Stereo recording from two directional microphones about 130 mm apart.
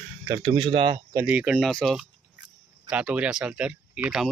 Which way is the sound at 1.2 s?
10° right (ahead or behind).